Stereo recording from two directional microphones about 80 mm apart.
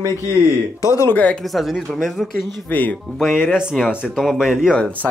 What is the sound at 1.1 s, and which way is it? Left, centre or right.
Speech, centre.